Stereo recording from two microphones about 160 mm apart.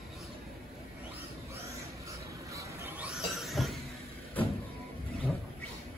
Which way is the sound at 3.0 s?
Centre (ahead or behind).